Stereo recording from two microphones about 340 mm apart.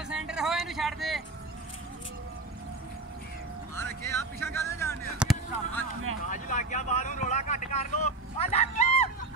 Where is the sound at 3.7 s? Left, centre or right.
Centre.